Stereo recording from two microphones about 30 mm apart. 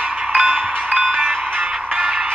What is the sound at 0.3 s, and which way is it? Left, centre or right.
Music, right.